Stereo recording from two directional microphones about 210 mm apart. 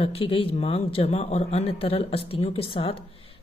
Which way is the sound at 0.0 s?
25° left (ahead or behind).